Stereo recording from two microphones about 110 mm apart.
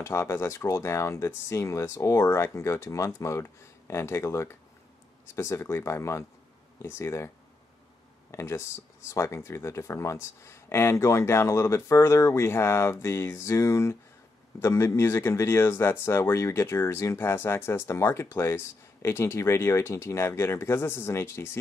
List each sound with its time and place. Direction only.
0.0 s speech: 25° left (ahead or behind)